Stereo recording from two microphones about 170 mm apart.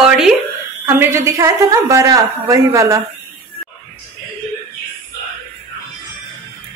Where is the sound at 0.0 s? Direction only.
Centre (ahead or behind).